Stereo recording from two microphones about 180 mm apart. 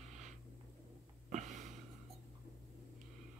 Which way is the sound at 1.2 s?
40° right (ahead or behind).